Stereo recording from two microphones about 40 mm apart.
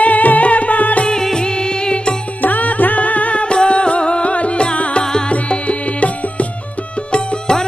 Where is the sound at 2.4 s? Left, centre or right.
Left.